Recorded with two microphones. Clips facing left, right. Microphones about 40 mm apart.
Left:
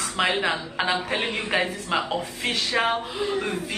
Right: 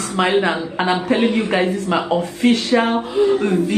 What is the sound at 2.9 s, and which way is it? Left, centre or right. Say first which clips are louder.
Speech: right 10 dB; right.